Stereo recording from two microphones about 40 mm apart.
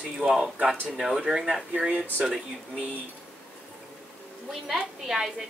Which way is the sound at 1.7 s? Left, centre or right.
Right.